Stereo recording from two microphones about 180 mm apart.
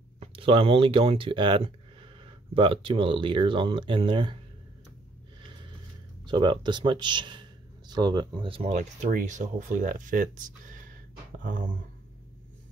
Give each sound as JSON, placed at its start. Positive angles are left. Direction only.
{"t": 0.2, "sound": "speech", "side_deg": -30}
{"t": 6.2, "sound": "speech", "side_deg": -25}